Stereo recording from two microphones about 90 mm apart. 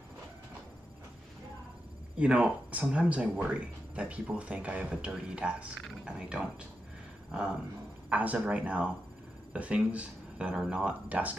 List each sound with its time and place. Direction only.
2.1 s speech: 10° right (ahead or behind)
8.1 s speech: 15° right (ahead or behind)